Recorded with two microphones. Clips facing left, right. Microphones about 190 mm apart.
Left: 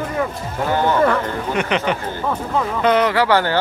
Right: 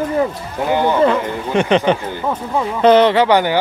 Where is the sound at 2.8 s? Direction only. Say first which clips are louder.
Right 6 dB; 30° right (ahead or behind).